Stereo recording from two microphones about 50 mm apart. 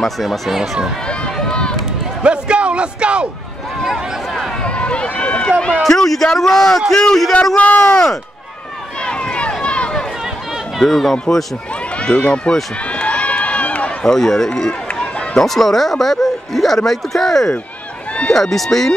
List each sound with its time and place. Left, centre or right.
0.0 s speech: centre
1.0 s run: centre
2.2 s a sound: right
3.8 s a sound: centre
4.6 s run: left
5.9 s speech: centre
7.6 s speech: left
9.0 s run: left
10.8 s speech: centre
12.0 s speech: centre
12.9 s run: left
14.0 s speech: centre
14.7 s run: left
15.4 s speech: centre